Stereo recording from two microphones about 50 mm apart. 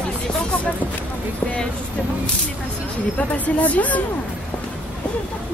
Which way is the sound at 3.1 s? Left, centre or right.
Left.